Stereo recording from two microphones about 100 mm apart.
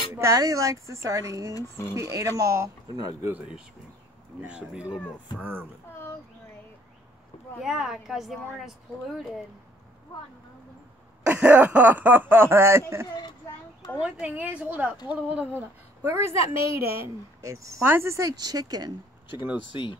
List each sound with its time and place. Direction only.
0.1 s speech: 35° right (ahead or behind)
1.5 s speech: 30° left (ahead or behind)
2.0 s a sound: 30° right (ahead or behind)
4.4 s a woman's voice: 10° right (ahead or behind)
7.6 s a woman's voice: 5° right (ahead or behind)
11.2 s a sound: 15° right (ahead or behind)
13.9 s a woman's voice: 15° right (ahead or behind)
16.2 s a woman's voice: 80° left
17.4 s speech: 30° right (ahead or behind)
19.3 s a woman's voice: 15° right (ahead or behind)
19.7 s speech: 55° left (ahead or behind)